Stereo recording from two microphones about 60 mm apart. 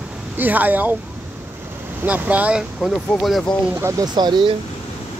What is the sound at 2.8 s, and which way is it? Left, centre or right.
Speech, centre.